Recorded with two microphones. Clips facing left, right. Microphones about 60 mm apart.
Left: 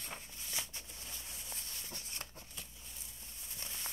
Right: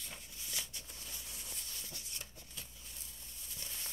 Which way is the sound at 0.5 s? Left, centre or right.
Left.